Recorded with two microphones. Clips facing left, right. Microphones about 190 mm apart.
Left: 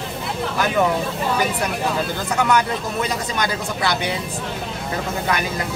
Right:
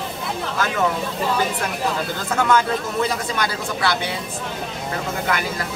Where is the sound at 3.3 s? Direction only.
20° left (ahead or behind).